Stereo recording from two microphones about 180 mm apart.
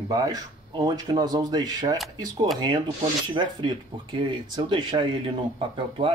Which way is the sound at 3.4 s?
25° right (ahead or behind).